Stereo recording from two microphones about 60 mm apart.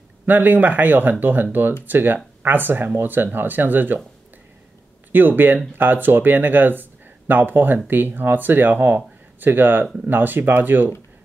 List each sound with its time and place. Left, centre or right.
0.3 s speech: right
5.1 s speech: right